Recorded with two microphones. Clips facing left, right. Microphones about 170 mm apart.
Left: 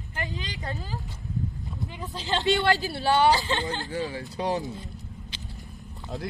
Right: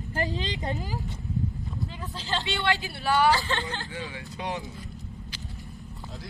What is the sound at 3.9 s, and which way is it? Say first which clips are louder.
Speech: left 6 dB; 40° left (ahead or behind).